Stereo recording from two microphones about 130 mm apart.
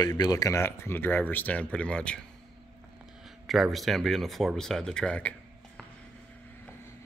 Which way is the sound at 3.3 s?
Centre (ahead or behind).